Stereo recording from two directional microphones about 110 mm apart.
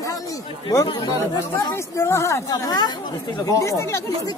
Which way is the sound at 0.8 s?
35° left (ahead or behind).